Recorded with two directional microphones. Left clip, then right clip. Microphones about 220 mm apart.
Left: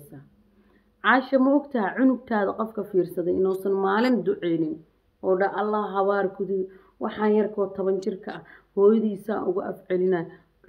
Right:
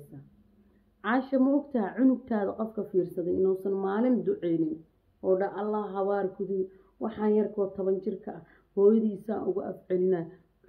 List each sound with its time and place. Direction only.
1.0 s speech: 10° left (ahead or behind)